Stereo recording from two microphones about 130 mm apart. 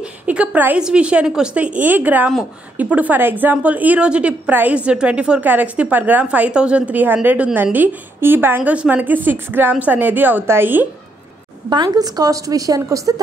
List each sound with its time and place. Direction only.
0.0 s a woman's voice: 10° right (ahead or behind)
11.7 s a woman's voice: 35° right (ahead or behind)